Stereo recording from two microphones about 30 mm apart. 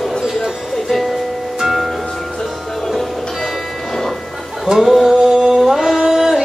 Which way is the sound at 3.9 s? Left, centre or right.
Centre.